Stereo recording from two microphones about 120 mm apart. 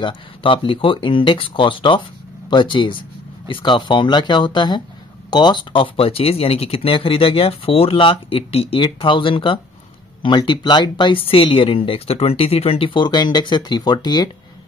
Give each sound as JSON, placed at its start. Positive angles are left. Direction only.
{"t": 0.0, "sound": "speech", "side_deg": 45}